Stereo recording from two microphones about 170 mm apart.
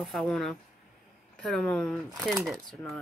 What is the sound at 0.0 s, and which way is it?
Speech, centre (ahead or behind).